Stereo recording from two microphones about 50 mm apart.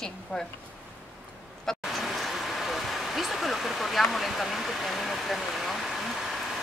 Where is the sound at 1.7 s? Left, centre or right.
Centre.